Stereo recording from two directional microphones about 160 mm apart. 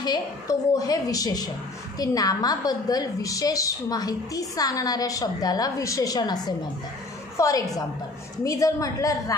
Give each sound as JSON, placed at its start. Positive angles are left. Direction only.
{"t": 0.0, "sound": "a woman's voice", "side_deg": 25}